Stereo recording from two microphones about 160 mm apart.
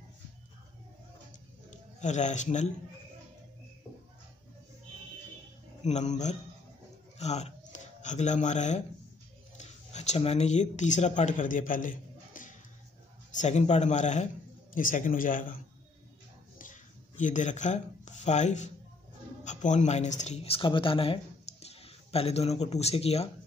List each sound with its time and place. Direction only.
1.7 s a man's voice: 50° left (ahead or behind)
5.9 s speech: 45° left (ahead or behind)
12.4 s music: 55° left (ahead or behind)
13.3 s a man's voice: 45° left (ahead or behind)
17.2 s speech: 50° left (ahead or behind)